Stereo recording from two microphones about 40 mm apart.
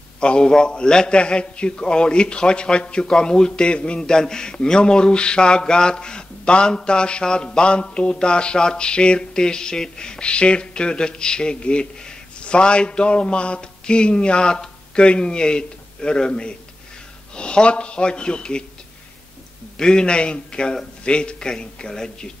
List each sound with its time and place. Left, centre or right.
0.2 s a man's voice: left
19.8 s a man's voice: left